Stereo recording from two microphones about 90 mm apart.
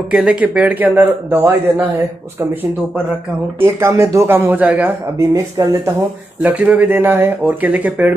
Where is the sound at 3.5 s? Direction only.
30° right (ahead or behind).